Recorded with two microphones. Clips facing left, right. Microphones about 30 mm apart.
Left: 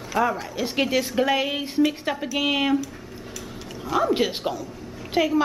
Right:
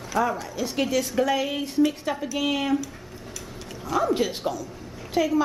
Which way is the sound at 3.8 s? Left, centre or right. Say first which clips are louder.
Left 2 dB; centre.